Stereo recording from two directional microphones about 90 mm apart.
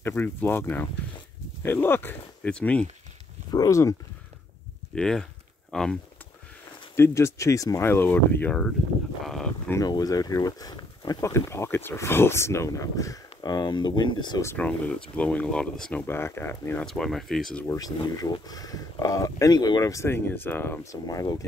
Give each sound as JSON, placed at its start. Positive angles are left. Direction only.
{"t": 0.0, "sound": "speech", "side_deg": 25}
{"t": 3.5, "sound": "speech", "side_deg": 40}
{"t": 4.9, "sound": "speech", "side_deg": 5}
{"t": 7.0, "sound": "speech", "side_deg": 30}
{"t": 7.8, "sound": "speech", "side_deg": 25}
{"t": 9.2, "sound": "a sound", "side_deg": 5}
{"t": 9.8, "sound": "speech", "side_deg": 45}
{"t": 11.1, "sound": "speech", "side_deg": 35}
{"t": 14.6, "sound": "speech", "side_deg": 15}
{"t": 16.1, "sound": "speech", "side_deg": 25}
{"t": 16.8, "sound": "speech", "side_deg": 5}
{"t": 17.6, "sound": "speech", "side_deg": 45}
{"t": 20.1, "sound": "speech", "side_deg": 25}
{"t": 20.8, "sound": "speech", "side_deg": 40}